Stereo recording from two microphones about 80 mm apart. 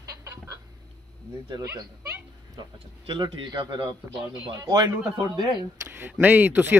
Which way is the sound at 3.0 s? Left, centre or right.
Right.